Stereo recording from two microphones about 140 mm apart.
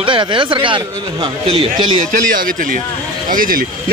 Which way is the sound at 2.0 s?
75° right (ahead or behind).